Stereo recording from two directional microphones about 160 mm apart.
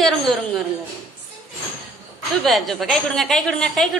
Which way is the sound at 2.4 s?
Centre (ahead or behind).